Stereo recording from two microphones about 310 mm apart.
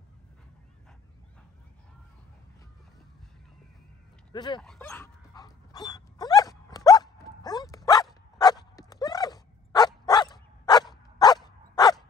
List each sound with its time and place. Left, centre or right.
4.3 s speech: centre
4.6 s dog: centre